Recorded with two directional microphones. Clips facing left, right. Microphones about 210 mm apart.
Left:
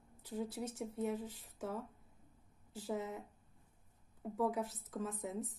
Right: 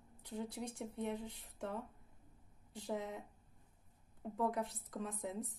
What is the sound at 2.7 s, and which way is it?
Speech, 5° left (ahead or behind).